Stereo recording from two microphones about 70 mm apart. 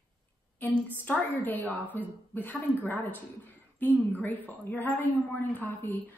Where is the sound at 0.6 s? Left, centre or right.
Left.